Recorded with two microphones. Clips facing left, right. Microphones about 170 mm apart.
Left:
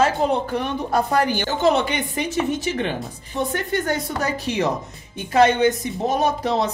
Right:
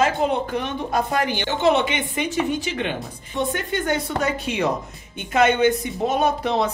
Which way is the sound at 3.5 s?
40° left (ahead or behind).